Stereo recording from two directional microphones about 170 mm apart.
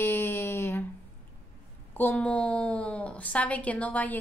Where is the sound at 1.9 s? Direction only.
10° left (ahead or behind).